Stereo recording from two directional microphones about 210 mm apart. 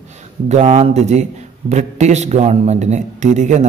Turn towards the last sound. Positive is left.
turn(degrees=-35)  # may be behind; listen again after turning